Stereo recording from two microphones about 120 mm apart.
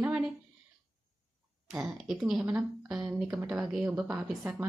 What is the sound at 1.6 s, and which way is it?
A woman's voice, 5° right (ahead or behind).